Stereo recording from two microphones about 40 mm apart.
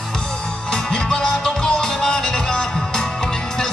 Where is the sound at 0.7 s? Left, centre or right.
Centre.